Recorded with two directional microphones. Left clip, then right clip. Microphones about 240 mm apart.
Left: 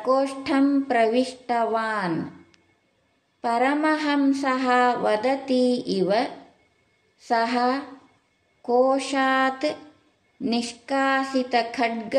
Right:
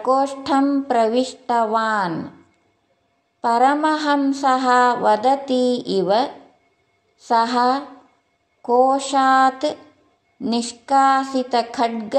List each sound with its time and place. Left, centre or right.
0.0 s speech: centre
3.3 s speech: centre